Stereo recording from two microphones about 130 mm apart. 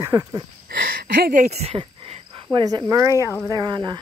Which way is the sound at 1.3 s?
65° right (ahead or behind).